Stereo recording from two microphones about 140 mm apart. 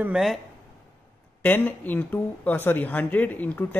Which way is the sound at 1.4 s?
15° left (ahead or behind).